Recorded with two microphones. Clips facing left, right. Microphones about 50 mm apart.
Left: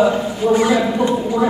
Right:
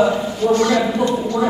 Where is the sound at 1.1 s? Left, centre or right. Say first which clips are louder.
Left 1 dB; centre.